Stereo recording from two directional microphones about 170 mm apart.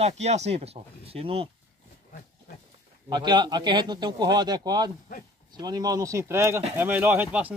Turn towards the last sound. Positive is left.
turn(degrees=-10)  # may be behind; listen again after turning